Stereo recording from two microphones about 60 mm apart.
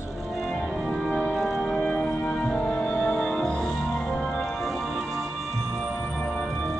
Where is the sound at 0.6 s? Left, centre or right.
Centre.